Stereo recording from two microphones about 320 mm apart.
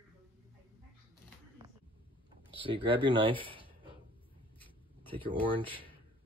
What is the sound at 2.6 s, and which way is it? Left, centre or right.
Speech, centre.